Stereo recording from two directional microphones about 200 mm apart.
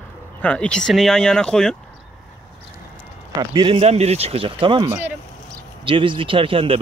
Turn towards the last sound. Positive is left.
turn(degrees=-25)  # may be behind; listen again after turning